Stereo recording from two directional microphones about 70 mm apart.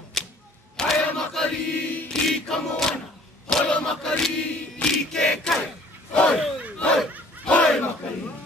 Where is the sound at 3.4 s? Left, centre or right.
Centre.